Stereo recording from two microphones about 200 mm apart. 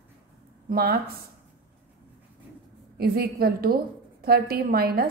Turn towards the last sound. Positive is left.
turn(degrees=-50)  # may be behind; listen again after turning